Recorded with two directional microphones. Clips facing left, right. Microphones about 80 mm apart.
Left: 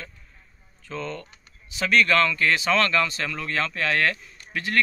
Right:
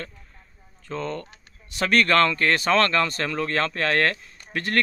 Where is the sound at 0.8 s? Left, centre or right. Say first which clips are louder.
Right 3 dB; right.